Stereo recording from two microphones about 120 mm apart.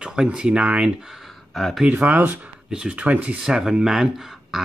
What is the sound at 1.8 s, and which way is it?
Speech, 15° right (ahead or behind).